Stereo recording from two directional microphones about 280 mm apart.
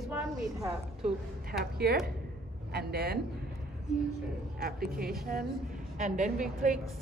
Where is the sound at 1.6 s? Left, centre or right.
Right.